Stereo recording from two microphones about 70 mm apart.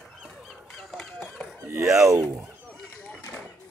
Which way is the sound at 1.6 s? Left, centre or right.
Right.